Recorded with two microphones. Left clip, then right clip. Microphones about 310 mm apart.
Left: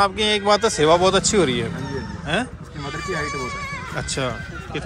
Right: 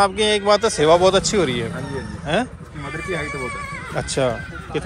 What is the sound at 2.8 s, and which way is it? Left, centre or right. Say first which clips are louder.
Speech: even; centre.